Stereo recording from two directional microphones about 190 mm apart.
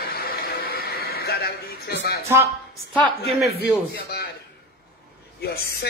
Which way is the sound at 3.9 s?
55° left (ahead or behind).